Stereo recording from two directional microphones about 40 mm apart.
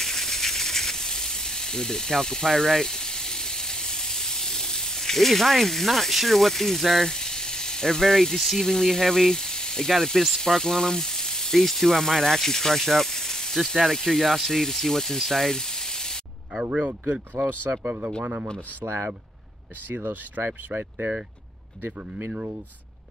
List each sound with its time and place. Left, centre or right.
0.0 s a sound: centre
10.3 s speech: centre
15.2 s a sound: centre
16.7 s speech: right
17.4 s speech: right
20.0 s speech: right